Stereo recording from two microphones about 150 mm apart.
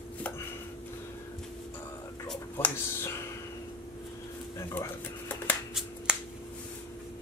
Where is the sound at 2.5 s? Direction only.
15° left (ahead or behind).